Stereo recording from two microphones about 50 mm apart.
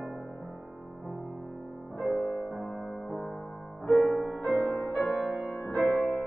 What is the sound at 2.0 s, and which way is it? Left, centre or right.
Music, centre.